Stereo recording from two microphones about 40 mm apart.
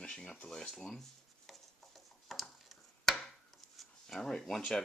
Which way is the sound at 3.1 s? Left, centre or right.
Centre.